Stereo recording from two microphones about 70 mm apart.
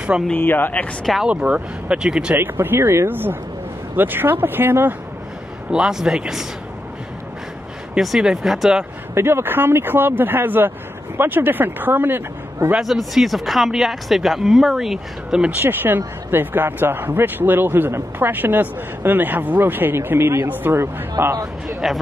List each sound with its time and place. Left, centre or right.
0.4 s speech: left
1.2 s speech: centre
2.3 s speech: right
3.1 s speech: right
5.7 s speech: centre
8.0 s speech: centre
9.1 s speech: right
12.8 s speech: centre
15.6 s speech: right
21.8 s speech: centre